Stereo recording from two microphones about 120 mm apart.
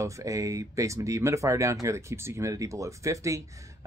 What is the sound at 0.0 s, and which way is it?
Speech, 25° right (ahead or behind).